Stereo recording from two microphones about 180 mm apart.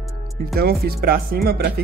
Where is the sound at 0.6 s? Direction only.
60° right (ahead or behind).